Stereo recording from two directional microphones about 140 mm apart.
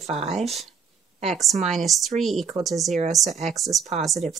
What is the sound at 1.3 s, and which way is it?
Speech, centre (ahead or behind).